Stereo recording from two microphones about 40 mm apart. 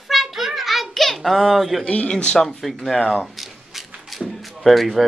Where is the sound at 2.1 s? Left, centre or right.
Centre.